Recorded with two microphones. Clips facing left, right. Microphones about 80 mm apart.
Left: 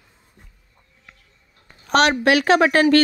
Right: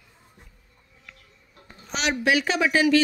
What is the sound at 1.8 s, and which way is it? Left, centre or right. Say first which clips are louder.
A woman's voice: left 8 dB; left.